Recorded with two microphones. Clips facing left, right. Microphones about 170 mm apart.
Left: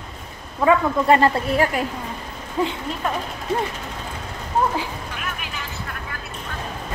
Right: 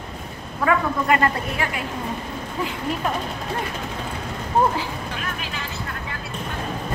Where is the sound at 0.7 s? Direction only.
30° left (ahead or behind).